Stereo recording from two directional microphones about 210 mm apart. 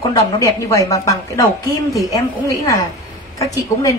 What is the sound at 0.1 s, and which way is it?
A woman's voice, 15° left (ahead or behind).